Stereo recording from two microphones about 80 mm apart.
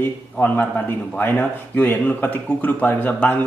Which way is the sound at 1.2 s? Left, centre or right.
Left.